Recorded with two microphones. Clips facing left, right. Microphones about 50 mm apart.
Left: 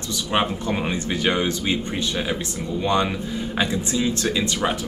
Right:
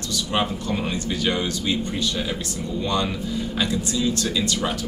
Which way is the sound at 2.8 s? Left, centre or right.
Left.